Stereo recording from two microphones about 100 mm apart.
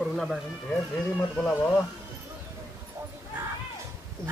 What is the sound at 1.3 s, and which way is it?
Speech, 15° left (ahead or behind).